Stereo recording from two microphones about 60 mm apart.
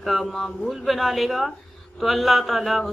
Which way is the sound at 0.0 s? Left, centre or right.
Centre.